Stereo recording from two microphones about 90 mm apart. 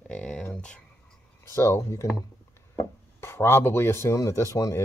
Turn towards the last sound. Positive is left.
turn(degrees=35)  # may be behind; listen again after turning